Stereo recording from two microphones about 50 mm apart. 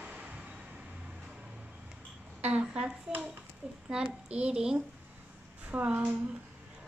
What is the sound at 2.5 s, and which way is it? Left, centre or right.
A woman's voice, right.